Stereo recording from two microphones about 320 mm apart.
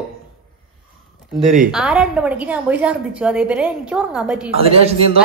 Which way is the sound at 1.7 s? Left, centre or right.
Centre.